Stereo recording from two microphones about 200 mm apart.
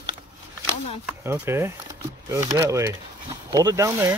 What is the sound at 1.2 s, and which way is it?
Speech, 10° right (ahead or behind).